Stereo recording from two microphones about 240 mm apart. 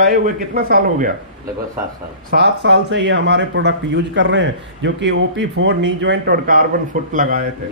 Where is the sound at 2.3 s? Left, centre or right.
Right.